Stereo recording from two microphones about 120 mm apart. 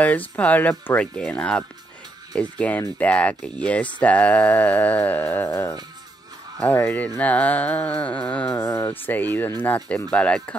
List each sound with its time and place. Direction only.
0.0 s speech: 15° left (ahead or behind)
8.6 s speech: 20° left (ahead or behind)